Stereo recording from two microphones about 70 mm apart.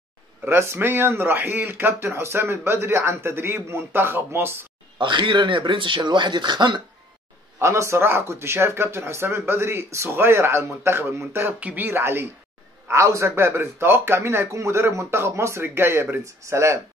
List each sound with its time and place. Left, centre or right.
0.5 s speech: right
4.9 s speech: right
7.6 s a man's voice: right